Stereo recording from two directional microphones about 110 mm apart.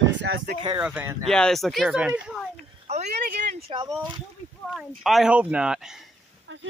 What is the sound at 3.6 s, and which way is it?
Speech, 55° right (ahead or behind).